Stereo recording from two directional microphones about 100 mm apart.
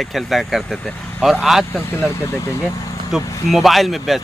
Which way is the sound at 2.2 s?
30° left (ahead or behind).